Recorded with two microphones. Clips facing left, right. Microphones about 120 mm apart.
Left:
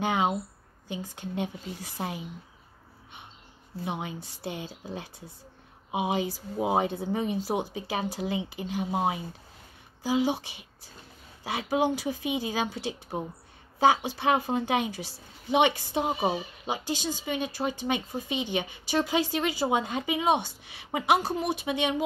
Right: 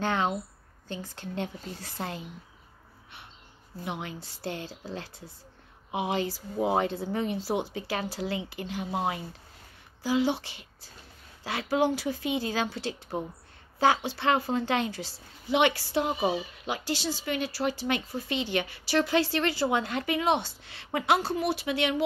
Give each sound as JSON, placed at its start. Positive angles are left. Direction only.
{"t": 0.0, "sound": "a woman's voice", "side_deg": 15}
{"t": 3.8, "sound": "a woman's voice", "side_deg": 20}